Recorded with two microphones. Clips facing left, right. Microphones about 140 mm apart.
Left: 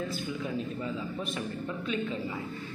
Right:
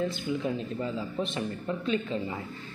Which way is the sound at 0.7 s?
30° right (ahead or behind).